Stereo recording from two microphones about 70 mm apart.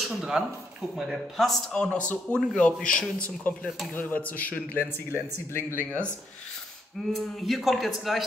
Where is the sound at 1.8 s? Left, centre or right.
Centre.